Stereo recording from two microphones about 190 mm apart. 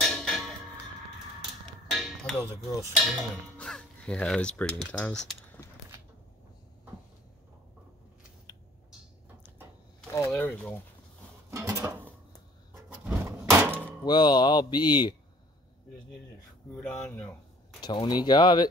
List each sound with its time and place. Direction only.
0.0 s music: centre (ahead or behind)
1.9 s music: centre (ahead or behind)
3.0 s speech: centre (ahead or behind)
8.5 s a sound: 25° left (ahead or behind)
10.1 s speech: 10° left (ahead or behind)
11.5 s a sound: 15° right (ahead or behind)
12.9 s a sound: 15° right (ahead or behind)
14.0 s speech: 25° left (ahead or behind)
16.7 s speech: 10° left (ahead or behind)
17.7 s speech: 25° left (ahead or behind)